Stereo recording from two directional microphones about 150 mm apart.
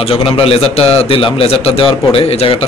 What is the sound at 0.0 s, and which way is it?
A man's voice, 35° left (ahead or behind).